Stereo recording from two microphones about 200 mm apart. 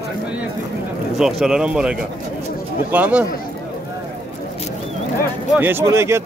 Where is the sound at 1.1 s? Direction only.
5° right (ahead or behind).